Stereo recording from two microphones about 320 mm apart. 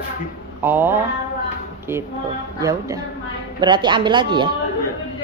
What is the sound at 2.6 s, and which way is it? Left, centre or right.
A woman's voice, centre.